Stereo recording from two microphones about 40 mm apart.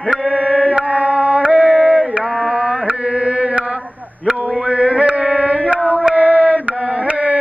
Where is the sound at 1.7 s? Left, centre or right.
Centre.